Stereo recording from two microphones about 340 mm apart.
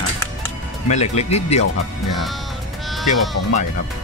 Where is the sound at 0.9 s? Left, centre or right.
Centre.